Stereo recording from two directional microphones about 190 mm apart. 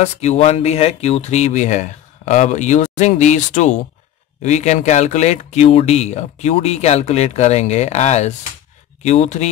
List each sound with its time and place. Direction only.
0.0 s speech: 35° left (ahead or behind)